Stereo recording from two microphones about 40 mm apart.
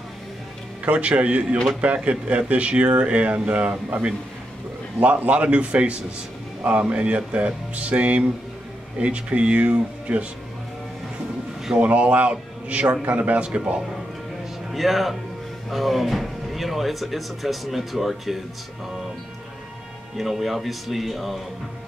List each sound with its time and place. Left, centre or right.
0.8 s speech: right
11.8 s speech: right
14.7 s speech: centre
20.2 s speech: centre